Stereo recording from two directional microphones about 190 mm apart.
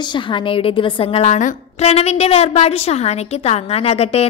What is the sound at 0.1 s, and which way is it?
A woman's voice, 25° left (ahead or behind).